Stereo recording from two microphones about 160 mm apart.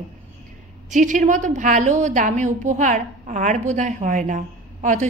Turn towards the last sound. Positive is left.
turn(degrees=-50)  # may be behind; listen again after turning